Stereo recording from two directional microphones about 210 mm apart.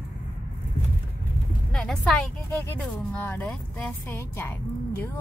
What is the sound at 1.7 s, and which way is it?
A woman's voice, 5° left (ahead or behind).